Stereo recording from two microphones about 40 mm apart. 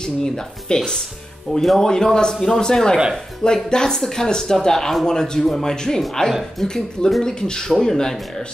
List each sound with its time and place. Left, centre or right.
0.0 s speech: centre
1.6 s speech: centre
1.9 s speech: centre